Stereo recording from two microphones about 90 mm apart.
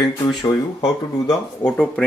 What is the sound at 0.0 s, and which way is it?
Speech, 55° left (ahead or behind).